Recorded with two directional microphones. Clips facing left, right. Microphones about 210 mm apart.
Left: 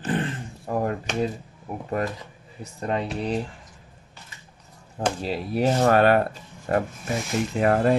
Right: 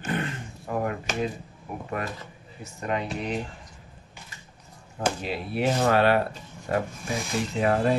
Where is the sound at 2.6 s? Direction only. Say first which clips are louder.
Left 2 dB; 35° left (ahead or behind).